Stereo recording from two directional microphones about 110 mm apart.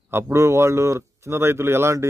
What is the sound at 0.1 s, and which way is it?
Speech, 25° right (ahead or behind).